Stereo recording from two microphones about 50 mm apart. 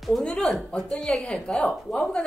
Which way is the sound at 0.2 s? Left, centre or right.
Centre.